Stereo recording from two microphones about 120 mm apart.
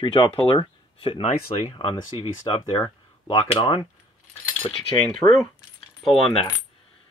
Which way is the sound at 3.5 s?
55° left (ahead or behind).